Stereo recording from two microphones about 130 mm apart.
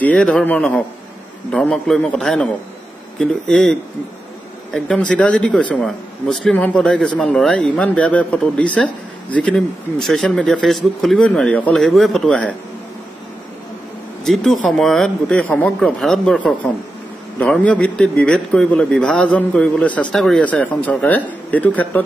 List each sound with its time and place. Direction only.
0.0 s speech: 5° left (ahead or behind)
4.7 s speech: 5° left (ahead or behind)
14.2 s speech: centre (ahead or behind)